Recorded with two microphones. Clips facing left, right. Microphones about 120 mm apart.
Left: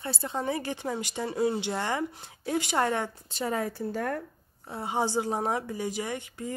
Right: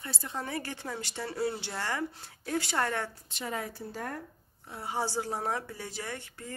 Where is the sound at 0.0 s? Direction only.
25° left (ahead or behind).